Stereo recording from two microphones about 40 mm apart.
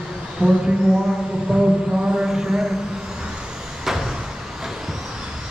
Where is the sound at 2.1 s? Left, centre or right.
Centre.